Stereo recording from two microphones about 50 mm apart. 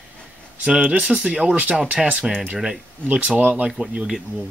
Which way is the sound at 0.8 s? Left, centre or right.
Right.